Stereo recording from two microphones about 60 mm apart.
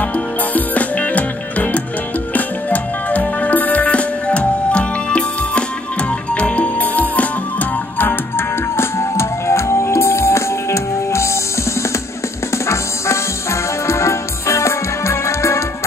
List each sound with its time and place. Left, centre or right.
0.1 s music: left
8.0 s music: left
12.6 s music: left